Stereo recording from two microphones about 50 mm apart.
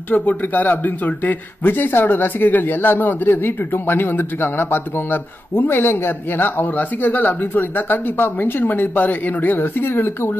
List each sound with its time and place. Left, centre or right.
0.1 s a man's voice: left